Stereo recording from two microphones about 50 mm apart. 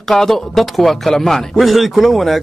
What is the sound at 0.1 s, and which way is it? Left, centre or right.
A man's voice, centre.